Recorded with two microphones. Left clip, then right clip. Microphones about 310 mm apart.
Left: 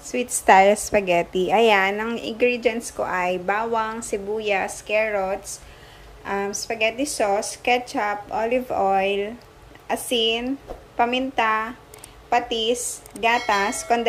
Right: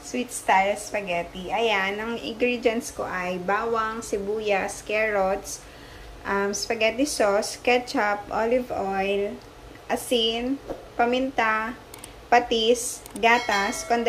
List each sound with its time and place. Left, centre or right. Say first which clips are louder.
0.1 s a woman's voice: left 6 dB; centre
12.7 s a woman's voice: right 2 dB; centre
13.2 s a woman's voice: left 1 dB; centre